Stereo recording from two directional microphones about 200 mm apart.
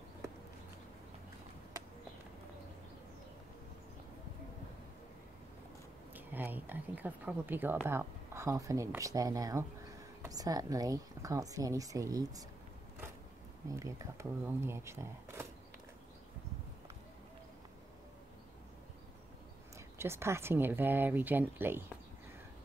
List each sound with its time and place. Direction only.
6.1 s a woman's voice: 10° right (ahead or behind)
13.7 s a woman's voice: 15° right (ahead or behind)
20.0 s a woman's voice: 10° right (ahead or behind)